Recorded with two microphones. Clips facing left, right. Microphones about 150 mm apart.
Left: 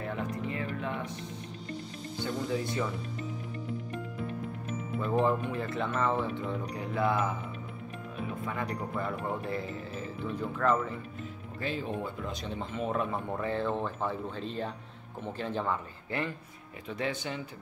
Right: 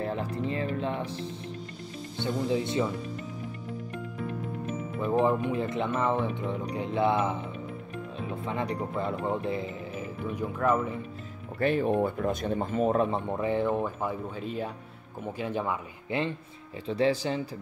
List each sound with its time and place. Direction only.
0.0 s music: 30° right (ahead or behind)
2.1 s speech: 25° right (ahead or behind)
5.0 s speech: 15° right (ahead or behind)
8.5 s speech: 25° right (ahead or behind)
11.6 s speech: 55° right (ahead or behind); by 13.2 s 35° right (ahead or behind)
13.3 s speech: 15° right (ahead or behind)
16.8 s speech: 30° right (ahead or behind)